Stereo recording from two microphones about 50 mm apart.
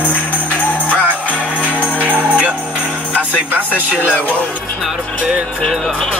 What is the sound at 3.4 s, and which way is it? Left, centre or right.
Speech, right.